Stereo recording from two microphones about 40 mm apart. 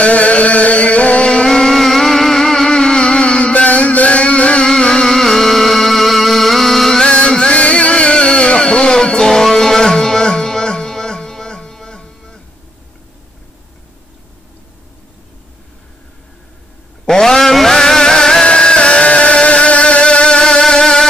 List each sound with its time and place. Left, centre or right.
0.0 s music: left
1.5 s music: centre; by 4.6 s left
4.6 s music: centre
7.1 s music: left
17.0 s music: centre